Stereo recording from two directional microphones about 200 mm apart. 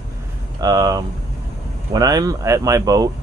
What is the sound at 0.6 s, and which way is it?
Speech, 20° right (ahead or behind).